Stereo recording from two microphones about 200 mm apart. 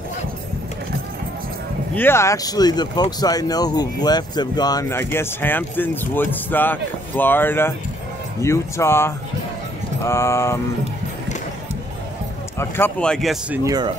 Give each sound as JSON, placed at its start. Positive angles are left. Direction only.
{"t": 2.0, "sound": "speech", "side_deg": 10}
{"t": 12.5, "sound": "speech", "side_deg": 10}
{"t": 13.7, "sound": "speech", "side_deg": -20}